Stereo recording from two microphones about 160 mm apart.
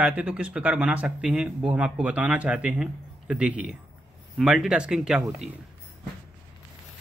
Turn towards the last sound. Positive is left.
turn(degrees=-5)  # may be behind; listen again after turning